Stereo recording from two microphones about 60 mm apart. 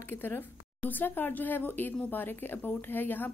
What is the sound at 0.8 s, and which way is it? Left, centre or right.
A woman's voice, left.